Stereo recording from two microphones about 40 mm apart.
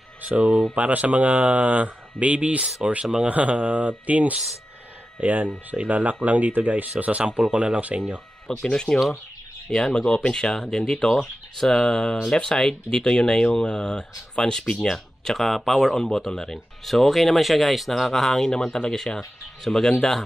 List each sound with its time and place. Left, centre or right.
0.2 s speech: right
3.3 s speech: right
8.6 s speech: left
11.5 s speech: centre
11.8 s speech: centre
16.3 s speech: centre
16.8 s speech: centre
18.5 s speech: centre